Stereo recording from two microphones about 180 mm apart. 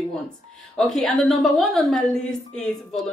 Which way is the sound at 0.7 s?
Centre (ahead or behind).